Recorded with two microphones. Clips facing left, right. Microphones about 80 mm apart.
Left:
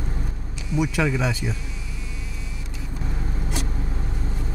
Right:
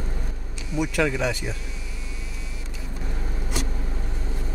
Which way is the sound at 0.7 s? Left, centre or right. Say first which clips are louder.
Left 1 dB; centre.